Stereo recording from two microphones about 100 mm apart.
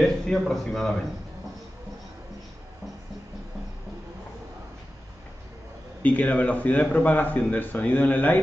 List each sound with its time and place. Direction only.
0.0 s a man's voice: 5° left (ahead or behind)
6.0 s speech: 15° left (ahead or behind)